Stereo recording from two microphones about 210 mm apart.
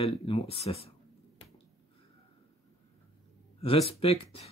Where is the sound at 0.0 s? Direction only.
25° left (ahead or behind).